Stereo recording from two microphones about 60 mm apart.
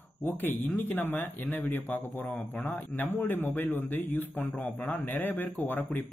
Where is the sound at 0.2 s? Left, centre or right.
Left.